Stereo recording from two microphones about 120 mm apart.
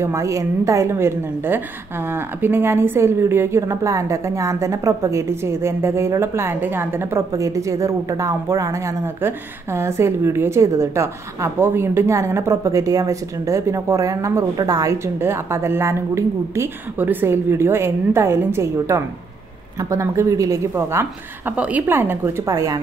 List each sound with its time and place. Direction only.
0.0 s a woman's voice: 25° right (ahead or behind)
22.5 s a woman's voice: 35° right (ahead or behind)